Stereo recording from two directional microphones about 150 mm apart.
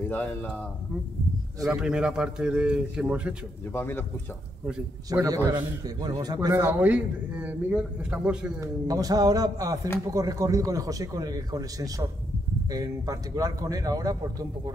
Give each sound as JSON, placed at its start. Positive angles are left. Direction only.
{"t": 0.1, "sound": "speech", "side_deg": 10}
{"t": 1.7, "sound": "a man's voice", "side_deg": -5}
{"t": 3.7, "sound": "speech", "side_deg": 15}
{"t": 5.2, "sound": "a man's voice", "side_deg": -25}
{"t": 8.5, "sound": "a man's voice", "side_deg": -25}